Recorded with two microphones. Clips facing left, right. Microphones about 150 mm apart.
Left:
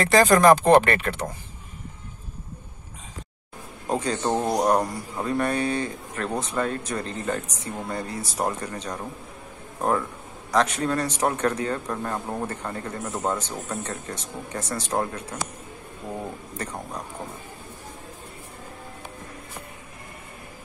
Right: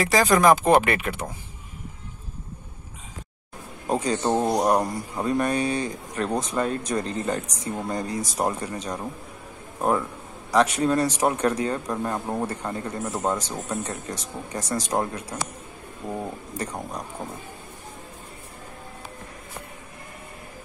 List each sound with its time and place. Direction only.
0.0 s speech: centre (ahead or behind)
3.8 s a man's voice: 10° right (ahead or behind)
13.8 s speech: 35° right (ahead or behind)
14.7 s speech: 10° right (ahead or behind)
16.5 s speech: 10° right (ahead or behind)